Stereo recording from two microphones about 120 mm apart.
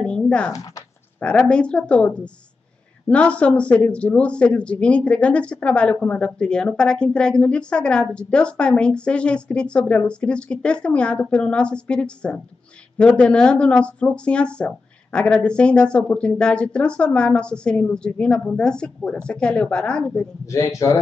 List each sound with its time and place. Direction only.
0.0 s speech: 10° left (ahead or behind)
20.4 s a man's voice: 25° left (ahead or behind)